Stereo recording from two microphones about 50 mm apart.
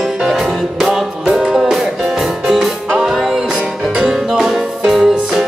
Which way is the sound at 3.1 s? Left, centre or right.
Centre.